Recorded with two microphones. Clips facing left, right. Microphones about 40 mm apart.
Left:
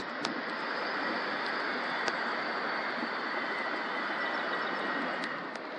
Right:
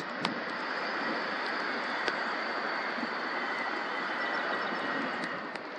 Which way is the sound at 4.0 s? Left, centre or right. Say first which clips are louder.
Right 1 dB; centre.